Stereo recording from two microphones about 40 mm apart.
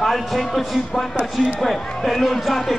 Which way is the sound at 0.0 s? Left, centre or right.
Centre.